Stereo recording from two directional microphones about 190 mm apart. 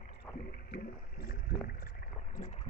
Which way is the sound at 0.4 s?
55° left (ahead or behind).